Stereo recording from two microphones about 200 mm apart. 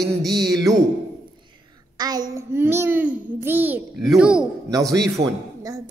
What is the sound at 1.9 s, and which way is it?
A child's voice, 20° right (ahead or behind).